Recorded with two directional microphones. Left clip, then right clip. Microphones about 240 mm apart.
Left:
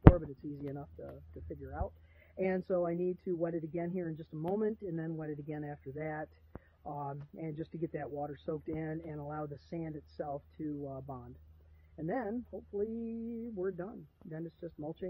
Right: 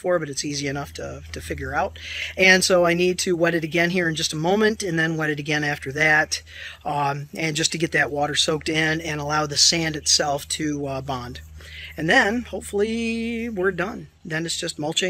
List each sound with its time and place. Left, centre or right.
0.7 s speech: centre